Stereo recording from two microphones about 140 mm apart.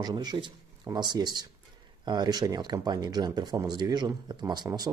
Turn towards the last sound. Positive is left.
turn(degrees=-30)  # may be behind; listen again after turning